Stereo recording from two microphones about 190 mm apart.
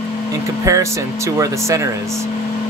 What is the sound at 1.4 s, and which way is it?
Speech, 15° right (ahead or behind).